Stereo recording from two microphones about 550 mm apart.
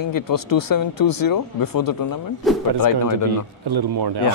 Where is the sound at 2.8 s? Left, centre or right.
Left.